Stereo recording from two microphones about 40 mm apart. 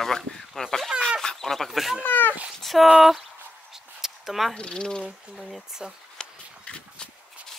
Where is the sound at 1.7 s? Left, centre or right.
Centre.